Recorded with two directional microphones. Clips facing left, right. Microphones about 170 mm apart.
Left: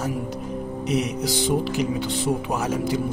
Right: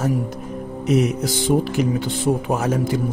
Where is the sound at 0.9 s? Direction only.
50° right (ahead or behind).